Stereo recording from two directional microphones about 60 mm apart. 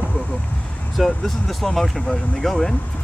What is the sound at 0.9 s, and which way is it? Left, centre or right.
Speech, centre.